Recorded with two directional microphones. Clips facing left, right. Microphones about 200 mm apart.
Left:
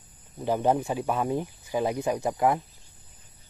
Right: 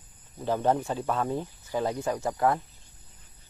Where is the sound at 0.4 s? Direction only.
15° left (ahead or behind).